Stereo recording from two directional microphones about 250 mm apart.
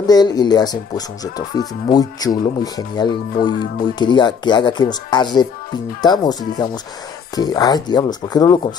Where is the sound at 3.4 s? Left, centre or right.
Left.